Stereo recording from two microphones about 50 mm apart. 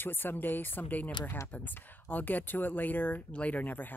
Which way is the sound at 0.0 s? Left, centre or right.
Left.